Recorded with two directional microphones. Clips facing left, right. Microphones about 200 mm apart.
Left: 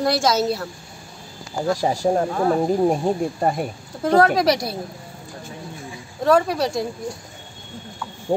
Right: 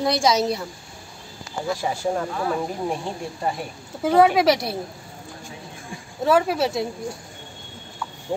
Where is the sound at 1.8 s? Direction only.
40° left (ahead or behind).